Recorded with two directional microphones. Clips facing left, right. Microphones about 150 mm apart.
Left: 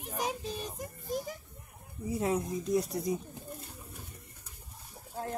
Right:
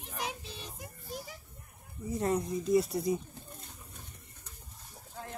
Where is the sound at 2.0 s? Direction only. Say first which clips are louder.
Even; 5° left (ahead or behind).